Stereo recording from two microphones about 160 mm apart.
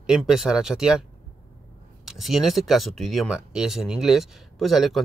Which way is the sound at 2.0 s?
Centre (ahead or behind).